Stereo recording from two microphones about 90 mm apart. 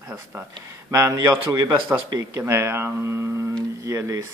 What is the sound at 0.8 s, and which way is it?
Speech, 35° right (ahead or behind).